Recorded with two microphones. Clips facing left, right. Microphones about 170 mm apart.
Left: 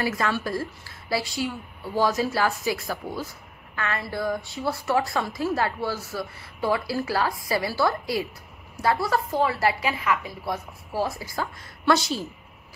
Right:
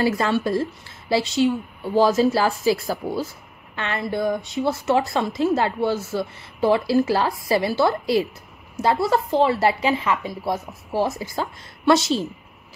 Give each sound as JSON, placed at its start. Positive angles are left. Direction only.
{"t": 0.0, "sound": "a woman's voice", "side_deg": -30}